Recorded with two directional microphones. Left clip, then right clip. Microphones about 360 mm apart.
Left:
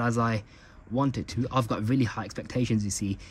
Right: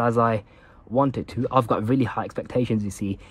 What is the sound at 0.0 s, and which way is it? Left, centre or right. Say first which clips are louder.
Speech: right 7 dB; centre.